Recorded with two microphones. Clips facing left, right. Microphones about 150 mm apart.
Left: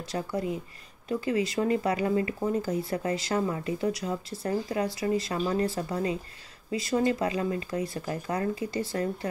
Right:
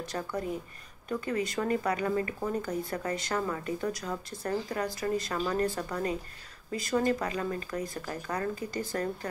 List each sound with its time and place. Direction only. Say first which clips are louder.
1.0 s speech: left 4 dB; 30° left (ahead or behind)